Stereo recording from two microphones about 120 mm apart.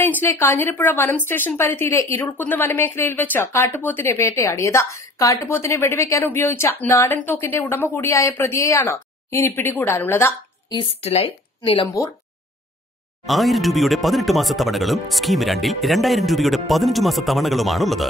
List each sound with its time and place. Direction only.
0.0 s a woman's voice: 15° left (ahead or behind)
11.0 s speech: 60° left (ahead or behind)
13.3 s speech: centre (ahead or behind)